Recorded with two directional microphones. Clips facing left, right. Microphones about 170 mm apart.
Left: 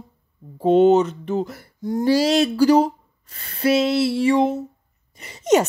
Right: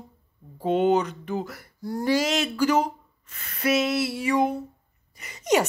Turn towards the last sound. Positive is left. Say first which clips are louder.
# left 5 dB
turn(degrees=25)  # may be behind; listen again after turning